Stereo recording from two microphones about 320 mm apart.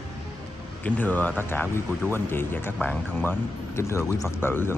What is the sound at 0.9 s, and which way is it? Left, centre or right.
Speech, centre.